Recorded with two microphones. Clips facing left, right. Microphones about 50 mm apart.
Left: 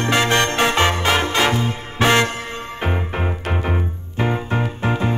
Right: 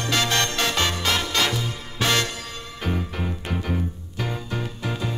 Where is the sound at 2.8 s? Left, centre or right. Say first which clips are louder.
Left 4 dB; left.